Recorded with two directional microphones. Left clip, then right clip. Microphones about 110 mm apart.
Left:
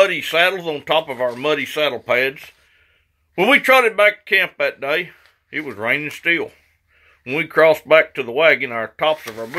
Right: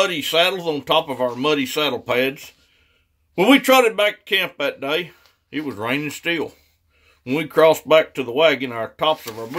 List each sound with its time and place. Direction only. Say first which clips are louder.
0.1 s speech: left 1 dB; 40° right (ahead or behind)